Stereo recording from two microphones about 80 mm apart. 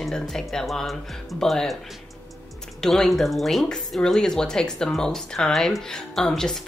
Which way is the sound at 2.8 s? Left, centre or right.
Centre.